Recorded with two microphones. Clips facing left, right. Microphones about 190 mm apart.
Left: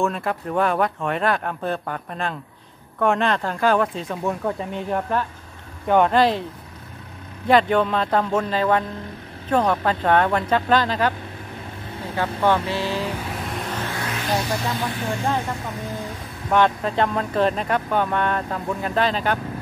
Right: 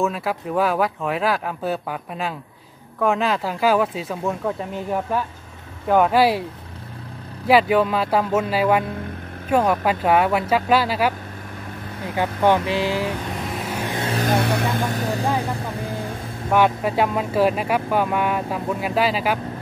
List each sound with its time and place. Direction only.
0.0 s speech: 5° right (ahead or behind)
7.4 s speech: 5° right (ahead or behind)
12.2 s speech: 15° right (ahead or behind)
13.5 s music: 5° right (ahead or behind)
14.1 s speech: 50° right (ahead or behind)
16.4 s speech: 10° right (ahead or behind)